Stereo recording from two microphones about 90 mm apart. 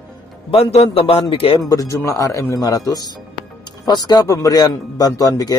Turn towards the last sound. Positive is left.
turn(degrees=40)  # may be behind; listen again after turning